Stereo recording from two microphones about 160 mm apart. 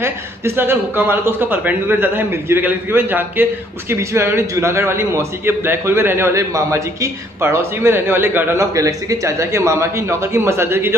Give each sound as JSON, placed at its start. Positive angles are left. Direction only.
{"t": 0.6, "sound": "a man's voice", "side_deg": -15}